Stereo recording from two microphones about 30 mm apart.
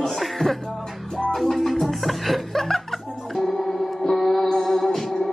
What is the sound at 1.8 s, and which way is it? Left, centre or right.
Speech, centre.